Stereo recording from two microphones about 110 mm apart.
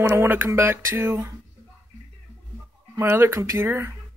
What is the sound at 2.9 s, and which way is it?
Speech, 25° right (ahead or behind).